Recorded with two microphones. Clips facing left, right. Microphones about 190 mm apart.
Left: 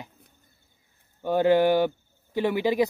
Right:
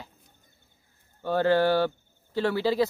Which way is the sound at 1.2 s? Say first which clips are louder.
Left 2 dB; 15° left (ahead or behind).